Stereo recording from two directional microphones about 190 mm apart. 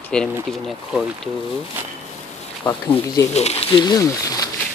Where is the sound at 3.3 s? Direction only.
35° left (ahead or behind).